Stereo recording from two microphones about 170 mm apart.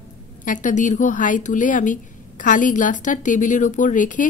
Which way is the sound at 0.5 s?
50° left (ahead or behind).